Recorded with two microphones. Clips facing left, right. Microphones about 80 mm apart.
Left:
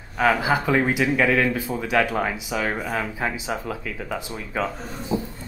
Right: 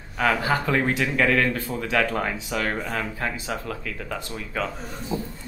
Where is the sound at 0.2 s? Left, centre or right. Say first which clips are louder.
Left 2 dB; centre.